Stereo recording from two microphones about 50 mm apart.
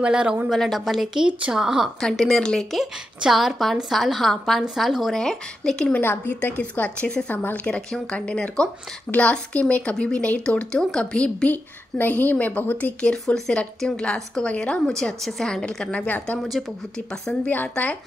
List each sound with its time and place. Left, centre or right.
0.0 s speech: centre
0.5 s a woman's voice: centre
1.5 s speech: centre
2.0 s a woman's voice: centre
2.8 s a woman's voice: centre
5.1 s a woman's voice: centre
5.9 s a woman's voice: left
6.5 s a woman's voice: left
11.4 s a woman's voice: left
13.0 s a woman's voice: centre
14.9 s a woman's voice: centre
17.5 s a woman's voice: left